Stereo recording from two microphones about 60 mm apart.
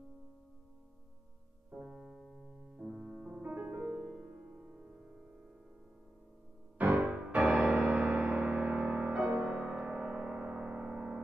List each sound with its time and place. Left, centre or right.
1.7 s music: centre
2.0 s piano: centre
2.8 s music: centre
6.8 s music: right